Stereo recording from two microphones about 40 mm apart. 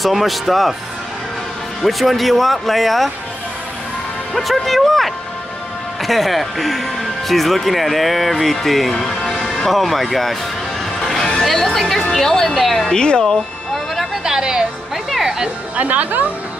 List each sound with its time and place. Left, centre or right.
0.0 s speech: centre
1.8 s speech: centre
4.3 s speech: centre
11.0 s music: centre
11.4 s speech: centre
12.8 s speech: left
14.2 s music: centre
15.2 s speech: centre
15.7 s speech: right